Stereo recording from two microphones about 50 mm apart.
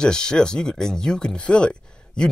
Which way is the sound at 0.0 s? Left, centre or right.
Centre.